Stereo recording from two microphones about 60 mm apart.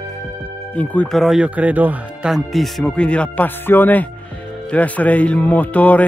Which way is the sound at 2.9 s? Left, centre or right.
Centre.